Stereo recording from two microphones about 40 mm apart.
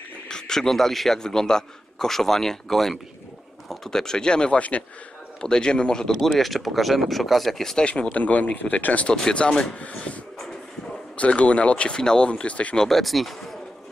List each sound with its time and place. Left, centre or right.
0.3 s a man's voice: centre
4.6 s speech: left
5.4 s a man's voice: left
6.1 s speech: centre
7.7 s speech: left
9.1 s a man's voice: left
11.1 s speech: left
12.0 s a man's voice: centre
12.3 s speech: left
12.7 s speech: centre